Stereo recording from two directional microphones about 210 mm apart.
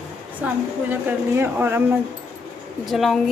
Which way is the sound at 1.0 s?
10° right (ahead or behind).